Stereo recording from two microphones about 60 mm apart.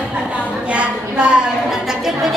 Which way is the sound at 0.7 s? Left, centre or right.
Centre.